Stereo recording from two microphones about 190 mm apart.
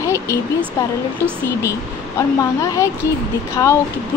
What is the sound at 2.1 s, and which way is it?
A woman's voice, 15° left (ahead or behind).